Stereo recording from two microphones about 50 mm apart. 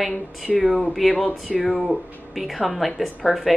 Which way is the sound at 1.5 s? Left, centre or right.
Centre.